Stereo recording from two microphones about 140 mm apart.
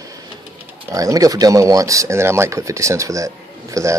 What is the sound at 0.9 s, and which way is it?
Speech, 25° right (ahead or behind).